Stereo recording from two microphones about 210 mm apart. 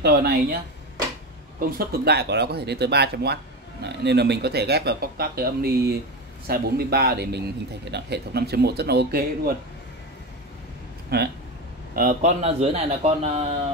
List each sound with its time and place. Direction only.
0.0 s a man's voice: 50° right (ahead or behind)
1.6 s a man's voice: 45° right (ahead or behind)
11.1 s a man's voice: 50° right (ahead or behind); by 13.4 s 30° right (ahead or behind)